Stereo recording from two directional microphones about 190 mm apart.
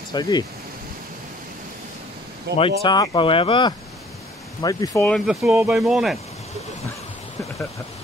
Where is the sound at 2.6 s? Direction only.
25° left (ahead or behind).